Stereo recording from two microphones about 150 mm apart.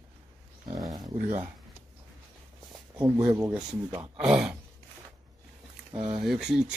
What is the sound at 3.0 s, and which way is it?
Speech, 20° right (ahead or behind).